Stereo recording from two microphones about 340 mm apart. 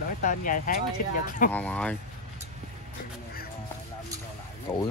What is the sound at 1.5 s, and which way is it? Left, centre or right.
Speech, centre.